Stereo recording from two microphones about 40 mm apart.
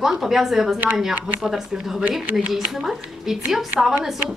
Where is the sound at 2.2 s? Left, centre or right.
Right.